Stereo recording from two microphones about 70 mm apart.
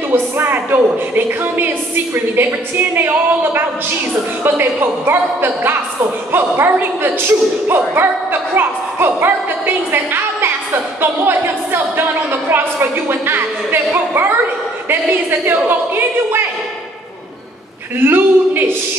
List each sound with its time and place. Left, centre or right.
0.1 s speech: right
4.4 s a woman's voice: right
17.9 s a woman's voice: right